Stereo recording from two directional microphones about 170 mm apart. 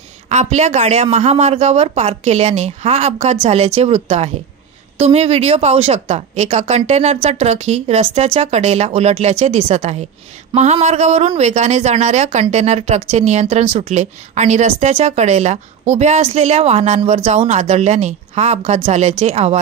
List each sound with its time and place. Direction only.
0.3 s speech: 40° right (ahead or behind)